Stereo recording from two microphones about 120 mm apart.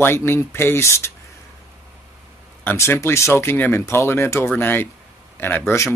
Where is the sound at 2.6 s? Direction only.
20° left (ahead or behind).